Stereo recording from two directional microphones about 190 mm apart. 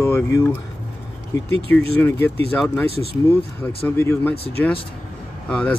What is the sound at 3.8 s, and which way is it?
Speech, 10° left (ahead or behind).